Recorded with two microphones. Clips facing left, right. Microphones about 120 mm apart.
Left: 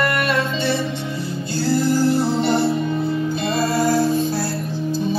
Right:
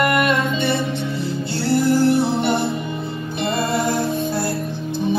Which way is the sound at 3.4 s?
25° right (ahead or behind).